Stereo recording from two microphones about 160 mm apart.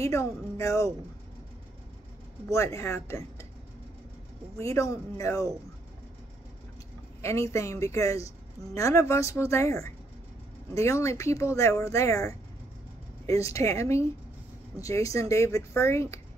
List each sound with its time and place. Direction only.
0.0 s speech: 20° left (ahead or behind)
2.5 s speech: 20° left (ahead or behind)
4.6 s speech: 20° left (ahead or behind)
7.2 s speech: 20° left (ahead or behind)